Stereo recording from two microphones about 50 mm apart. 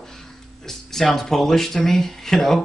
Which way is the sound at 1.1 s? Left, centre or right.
Centre.